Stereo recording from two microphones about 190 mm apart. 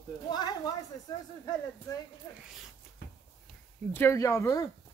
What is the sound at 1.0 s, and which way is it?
Speech, 20° left (ahead or behind).